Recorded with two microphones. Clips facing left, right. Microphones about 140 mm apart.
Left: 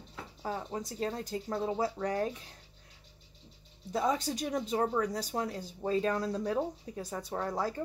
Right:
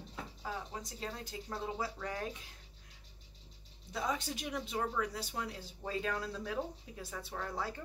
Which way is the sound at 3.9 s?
40° left (ahead or behind).